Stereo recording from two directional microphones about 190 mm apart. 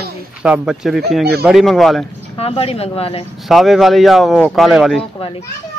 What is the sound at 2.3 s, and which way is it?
Speech, 30° left (ahead or behind).